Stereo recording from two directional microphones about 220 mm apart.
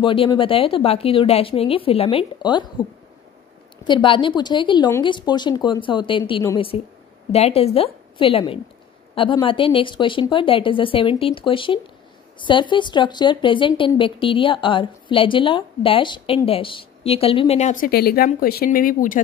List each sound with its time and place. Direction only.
0.0 s a woman's voice: 25° left (ahead or behind)